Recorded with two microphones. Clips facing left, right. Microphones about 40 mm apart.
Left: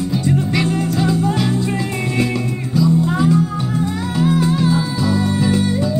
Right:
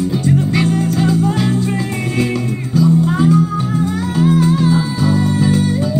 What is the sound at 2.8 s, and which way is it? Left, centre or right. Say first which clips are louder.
Music: right 2 dB; right.